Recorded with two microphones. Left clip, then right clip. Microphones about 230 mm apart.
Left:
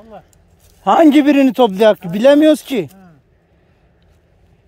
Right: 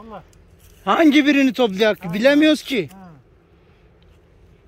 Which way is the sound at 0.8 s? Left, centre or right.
Left.